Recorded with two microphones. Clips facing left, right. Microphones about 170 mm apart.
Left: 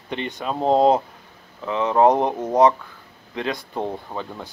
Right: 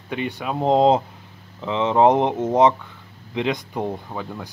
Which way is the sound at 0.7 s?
20° right (ahead or behind).